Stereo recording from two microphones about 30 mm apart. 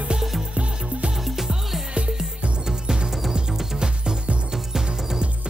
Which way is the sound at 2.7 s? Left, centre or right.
Right.